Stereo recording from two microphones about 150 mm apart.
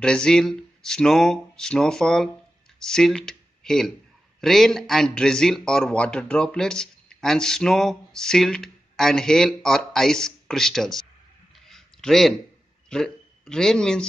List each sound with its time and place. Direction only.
0.0 s speech: 5° left (ahead or behind)
11.6 s a sound: 5° left (ahead or behind)
12.9 s speech: 5° left (ahead or behind)